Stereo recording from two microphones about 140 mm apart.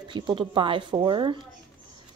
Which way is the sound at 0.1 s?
35° right (ahead or behind).